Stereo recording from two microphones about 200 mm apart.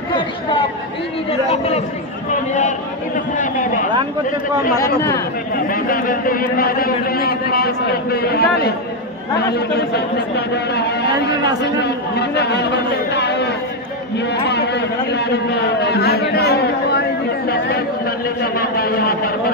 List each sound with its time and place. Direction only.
0.1 s chatter: 25° left (ahead or behind)
3.3 s a man's voice: 40° left (ahead or behind); by 13.6 s 55° left (ahead or behind)
14.1 s a sound: 55° left (ahead or behind)
17.5 s chatter: 50° left (ahead or behind)
18.4 s a man's voice: 50° left (ahead or behind)